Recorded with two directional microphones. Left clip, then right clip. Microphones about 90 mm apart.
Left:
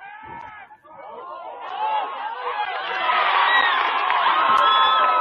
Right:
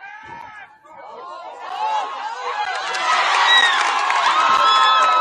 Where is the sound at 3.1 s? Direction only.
35° right (ahead or behind).